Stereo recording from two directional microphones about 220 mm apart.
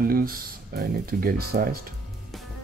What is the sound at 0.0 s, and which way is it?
Speech, 40° right (ahead or behind).